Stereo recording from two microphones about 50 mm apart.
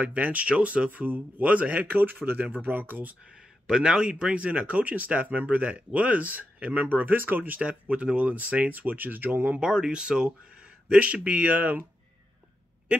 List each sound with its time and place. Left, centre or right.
0.0 s speech: right
3.8 s speech: centre; by 9.6 s right
9.6 s speech: centre